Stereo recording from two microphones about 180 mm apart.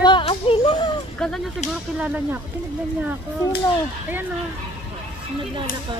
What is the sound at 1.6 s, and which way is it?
Speech, 40° left (ahead or behind).